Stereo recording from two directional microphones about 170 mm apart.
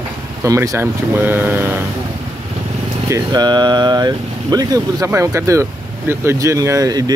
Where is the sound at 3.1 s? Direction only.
25° right (ahead or behind).